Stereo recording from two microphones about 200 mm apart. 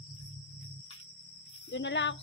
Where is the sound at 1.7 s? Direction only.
65° left (ahead or behind).